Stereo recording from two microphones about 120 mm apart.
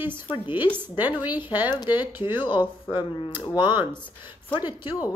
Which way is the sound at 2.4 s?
40° left (ahead or behind).